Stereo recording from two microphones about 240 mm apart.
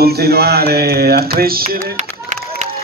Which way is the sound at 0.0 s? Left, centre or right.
Right.